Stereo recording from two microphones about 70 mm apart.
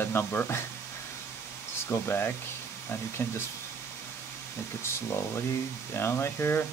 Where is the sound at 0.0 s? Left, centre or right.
Left.